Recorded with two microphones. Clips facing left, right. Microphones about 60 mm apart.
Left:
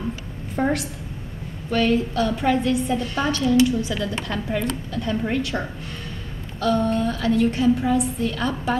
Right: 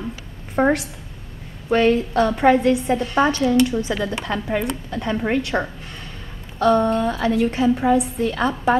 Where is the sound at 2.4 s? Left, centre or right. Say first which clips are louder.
Right 6 dB; right.